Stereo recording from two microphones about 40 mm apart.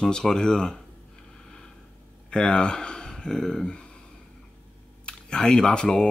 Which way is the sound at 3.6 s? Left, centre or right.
Left.